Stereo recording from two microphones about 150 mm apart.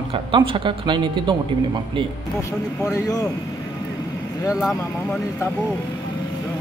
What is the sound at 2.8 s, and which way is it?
Speech, 20° left (ahead or behind).